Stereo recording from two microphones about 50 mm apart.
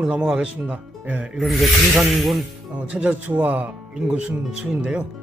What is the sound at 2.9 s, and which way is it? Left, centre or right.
Speech, right.